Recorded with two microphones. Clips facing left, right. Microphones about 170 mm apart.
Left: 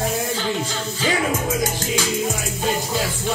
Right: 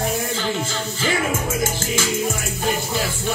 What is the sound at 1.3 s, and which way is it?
Music, 15° left (ahead or behind).